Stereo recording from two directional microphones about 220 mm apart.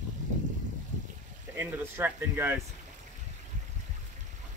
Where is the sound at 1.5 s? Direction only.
10° right (ahead or behind).